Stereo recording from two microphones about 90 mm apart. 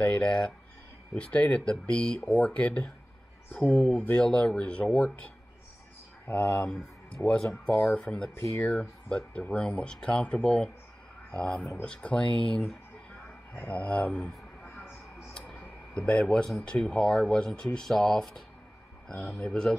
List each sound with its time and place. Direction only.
0.0 s speech: 15° left (ahead or behind)
6.2 s speech: 20° left (ahead or behind)
13.5 s speech: 20° left (ahead or behind)
15.9 s speech: 15° left (ahead or behind)
19.4 s speech: 10° left (ahead or behind)